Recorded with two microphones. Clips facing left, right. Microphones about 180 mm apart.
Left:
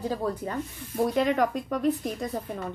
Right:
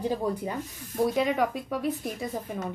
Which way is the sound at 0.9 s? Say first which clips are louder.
Left 1 dB; centre (ahead or behind).